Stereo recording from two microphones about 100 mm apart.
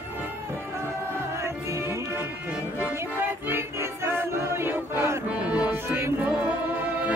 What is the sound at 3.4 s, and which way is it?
Music, 25° right (ahead or behind).